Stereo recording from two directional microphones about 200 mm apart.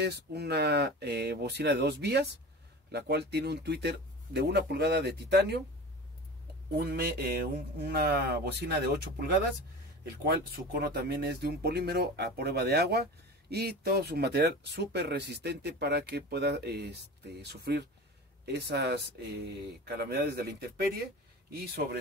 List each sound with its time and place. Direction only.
0.0 s speech: 55° right (ahead or behind)
6.7 s speech: 50° right (ahead or behind)
10.3 s speech: 50° right (ahead or behind)
21.5 s speech: 50° right (ahead or behind)